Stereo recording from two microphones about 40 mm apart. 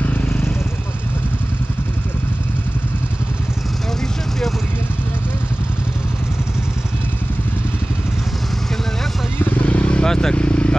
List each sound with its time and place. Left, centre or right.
0.0 s vehicle: left
0.3 s vehicle: left
9.7 s vehicle: left
10.0 s vehicle: centre
10.3 s vehicle: left